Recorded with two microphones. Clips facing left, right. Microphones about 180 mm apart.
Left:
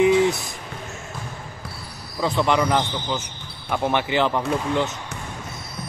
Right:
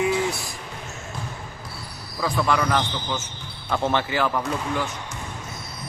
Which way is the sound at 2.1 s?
20° left (ahead or behind).